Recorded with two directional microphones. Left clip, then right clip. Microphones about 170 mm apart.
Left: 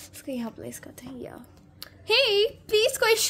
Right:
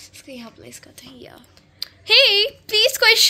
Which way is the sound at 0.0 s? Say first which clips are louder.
Left 3 dB; 65° left (ahead or behind).